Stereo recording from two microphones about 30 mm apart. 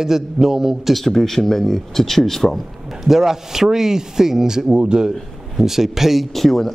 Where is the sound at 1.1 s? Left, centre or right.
Centre.